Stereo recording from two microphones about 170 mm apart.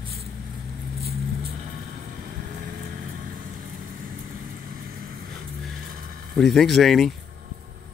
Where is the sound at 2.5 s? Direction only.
55° right (ahead or behind).